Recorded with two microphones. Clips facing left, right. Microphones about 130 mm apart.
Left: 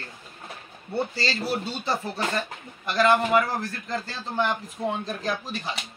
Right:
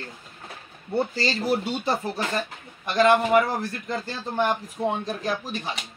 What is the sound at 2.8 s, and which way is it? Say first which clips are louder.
Speech: right 2 dB; 20° right (ahead or behind).